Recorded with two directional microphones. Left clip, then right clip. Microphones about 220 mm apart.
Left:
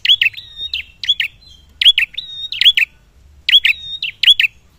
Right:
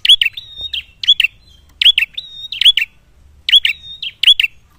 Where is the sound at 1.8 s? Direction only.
10° right (ahead or behind).